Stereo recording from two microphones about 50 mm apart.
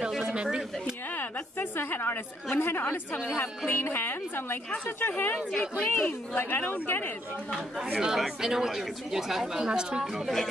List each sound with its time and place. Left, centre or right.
0.3 s speech: centre
1.1 s a woman's voice: left
5.5 s speech: centre
6.3 s speech: left
7.8 s speech: centre
10.1 s speech: centre